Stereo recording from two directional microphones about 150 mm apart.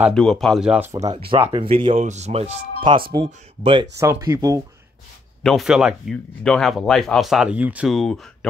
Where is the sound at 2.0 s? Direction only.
50° right (ahead or behind).